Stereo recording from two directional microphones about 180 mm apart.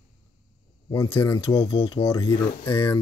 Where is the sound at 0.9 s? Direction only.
15° left (ahead or behind).